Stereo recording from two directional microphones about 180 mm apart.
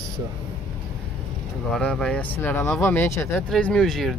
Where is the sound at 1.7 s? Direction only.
5° left (ahead or behind).